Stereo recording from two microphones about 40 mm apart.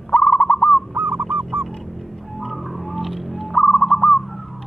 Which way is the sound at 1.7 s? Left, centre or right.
Centre.